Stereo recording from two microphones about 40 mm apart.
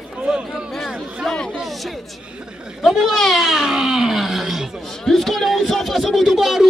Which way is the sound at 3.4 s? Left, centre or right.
Centre.